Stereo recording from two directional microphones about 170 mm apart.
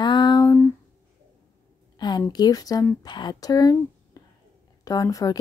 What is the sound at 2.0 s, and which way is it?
A woman's voice, 25° left (ahead or behind).